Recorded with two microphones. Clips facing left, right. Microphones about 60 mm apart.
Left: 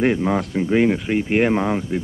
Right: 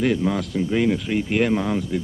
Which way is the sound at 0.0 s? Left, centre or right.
Left.